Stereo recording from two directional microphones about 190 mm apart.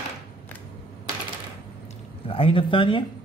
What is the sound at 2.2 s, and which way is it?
Speech, 30° left (ahead or behind).